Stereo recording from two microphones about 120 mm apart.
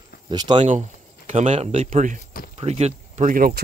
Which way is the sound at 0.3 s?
40° right (ahead or behind).